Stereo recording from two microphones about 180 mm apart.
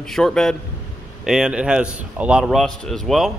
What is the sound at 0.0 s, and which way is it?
A man's voice, 5° left (ahead or behind).